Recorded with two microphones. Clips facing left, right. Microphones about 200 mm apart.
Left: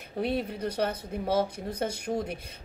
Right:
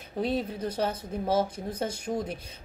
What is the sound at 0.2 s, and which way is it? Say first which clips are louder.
Speech: even; 60° left (ahead or behind).